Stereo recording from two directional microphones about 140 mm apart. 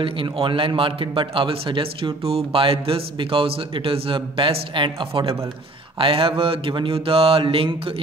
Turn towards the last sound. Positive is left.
turn(degrees=-40)  # may be behind; listen again after turning